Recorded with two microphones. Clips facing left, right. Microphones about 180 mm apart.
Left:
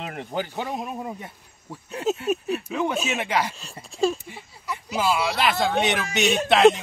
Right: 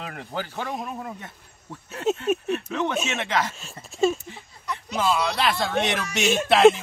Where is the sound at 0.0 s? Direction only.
20° left (ahead or behind).